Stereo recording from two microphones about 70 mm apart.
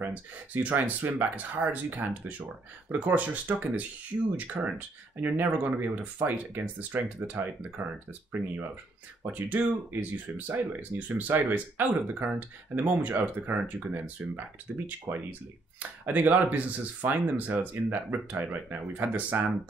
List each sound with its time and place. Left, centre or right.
0.0 s speech: right
16.1 s speech: right